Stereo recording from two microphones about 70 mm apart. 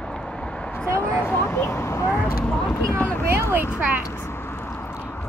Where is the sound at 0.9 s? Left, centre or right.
Left.